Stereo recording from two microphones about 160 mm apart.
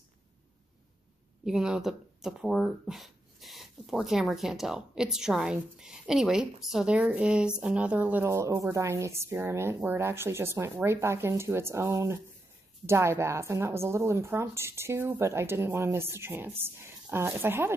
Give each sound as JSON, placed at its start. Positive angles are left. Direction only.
{"t": 1.4, "sound": "speech", "side_deg": -5}